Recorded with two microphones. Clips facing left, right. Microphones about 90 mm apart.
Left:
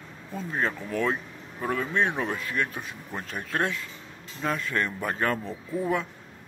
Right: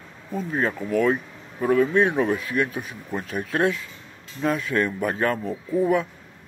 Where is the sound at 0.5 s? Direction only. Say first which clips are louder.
Right 4 dB; 10° right (ahead or behind).